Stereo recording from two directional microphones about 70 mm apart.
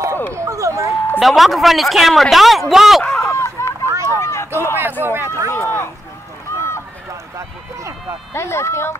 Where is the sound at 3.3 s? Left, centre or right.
Left.